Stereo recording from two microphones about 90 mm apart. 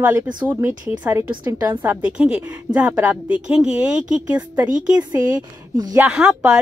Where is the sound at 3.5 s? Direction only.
10° right (ahead or behind).